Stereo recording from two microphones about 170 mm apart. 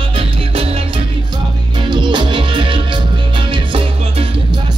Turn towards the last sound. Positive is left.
turn(degrees=-30)  # may be behind; listen again after turning